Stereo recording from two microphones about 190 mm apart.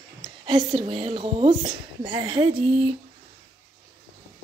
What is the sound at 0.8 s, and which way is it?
A woman's voice, 30° right (ahead or behind).